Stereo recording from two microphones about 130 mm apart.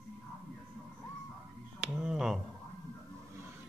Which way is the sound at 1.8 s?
5° right (ahead or behind).